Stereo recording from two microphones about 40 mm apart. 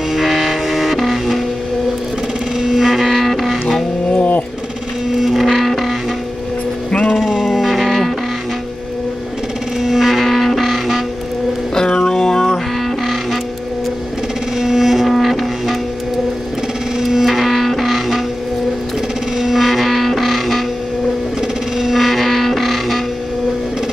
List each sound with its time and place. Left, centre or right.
0.1 s music: centre
2.7 s a sound: centre
5.1 s music: centre
6.9 s music: left
7.2 s music: centre
9.8 s music: centre
11.7 s music: centre
14.6 s music: centre
17.0 s music: centre
19.3 s a sound: centre